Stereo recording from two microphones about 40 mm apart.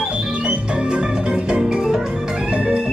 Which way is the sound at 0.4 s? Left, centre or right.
Right.